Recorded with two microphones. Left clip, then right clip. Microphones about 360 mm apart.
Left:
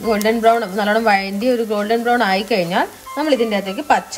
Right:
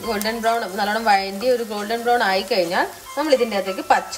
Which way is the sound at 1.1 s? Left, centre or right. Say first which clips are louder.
Left 2 dB; left.